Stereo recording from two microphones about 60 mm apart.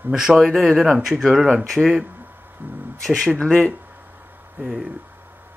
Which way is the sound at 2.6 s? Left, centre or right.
Right.